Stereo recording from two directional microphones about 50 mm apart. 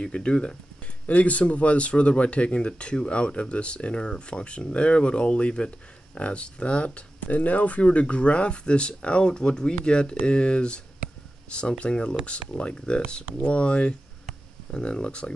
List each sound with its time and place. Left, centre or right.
0.0 s speech: left